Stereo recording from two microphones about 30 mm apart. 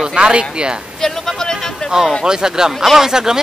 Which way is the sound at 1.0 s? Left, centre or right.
Centre.